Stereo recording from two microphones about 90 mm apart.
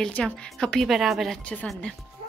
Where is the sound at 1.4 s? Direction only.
15° left (ahead or behind).